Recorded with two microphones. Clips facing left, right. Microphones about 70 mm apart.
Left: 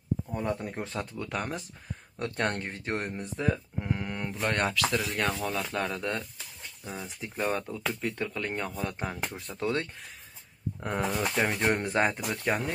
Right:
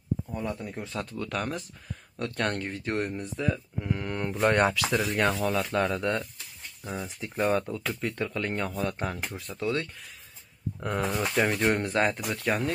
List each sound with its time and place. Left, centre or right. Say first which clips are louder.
0.3 s speech: left 2 dB; left
1.1 s speech: right 2 dB; centre
4.0 s speech: right 6 dB; centre
9.6 s speech: right 1 dB; left
10.8 s speech: right 1 dB; centre
11.1 s speech: right 4 dB; centre
11.8 s speech: right 1 dB; left